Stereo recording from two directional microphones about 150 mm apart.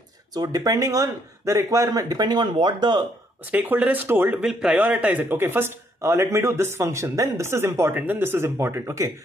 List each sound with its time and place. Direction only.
0.3 s speech: 25° right (ahead or behind)
3.5 s speech: 10° right (ahead or behind)